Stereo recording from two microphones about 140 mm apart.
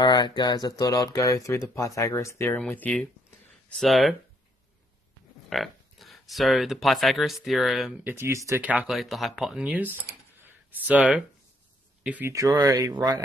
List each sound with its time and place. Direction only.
0.0 s speech: 30° left (ahead or behind); by 4.2 s centre (ahead or behind)
5.5 s speech: centre (ahead or behind)
8.0 s speech: 20° right (ahead or behind)
8.6 s speech: 10° right (ahead or behind)
12.4 s speech: 25° right (ahead or behind)